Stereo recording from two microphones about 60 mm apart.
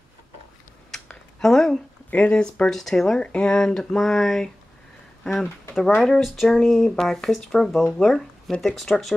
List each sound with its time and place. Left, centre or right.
0.9 s a sound: centre
2.2 s speech: centre
3.2 s speech: centre
6.2 s speech: centre